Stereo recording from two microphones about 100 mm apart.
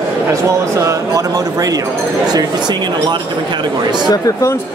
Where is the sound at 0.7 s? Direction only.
30° right (ahead or behind).